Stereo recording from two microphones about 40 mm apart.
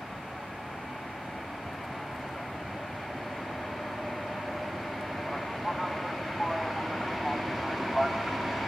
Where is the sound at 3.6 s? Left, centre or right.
Centre.